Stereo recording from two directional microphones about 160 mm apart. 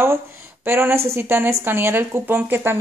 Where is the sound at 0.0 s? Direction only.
15° right (ahead or behind).